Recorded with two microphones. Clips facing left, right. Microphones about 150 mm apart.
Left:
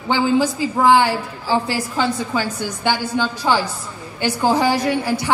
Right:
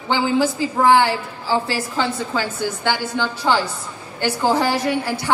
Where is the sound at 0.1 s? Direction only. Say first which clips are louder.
Left 1 dB; 15° left (ahead or behind).